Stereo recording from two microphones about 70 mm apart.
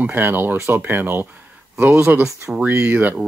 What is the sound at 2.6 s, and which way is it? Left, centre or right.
Speech, right.